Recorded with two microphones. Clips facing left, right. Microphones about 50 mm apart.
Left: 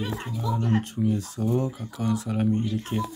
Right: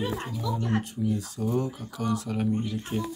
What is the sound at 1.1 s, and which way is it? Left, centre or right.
Speech, left.